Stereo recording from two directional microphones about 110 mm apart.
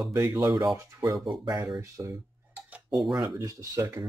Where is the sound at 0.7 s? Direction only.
25° right (ahead or behind).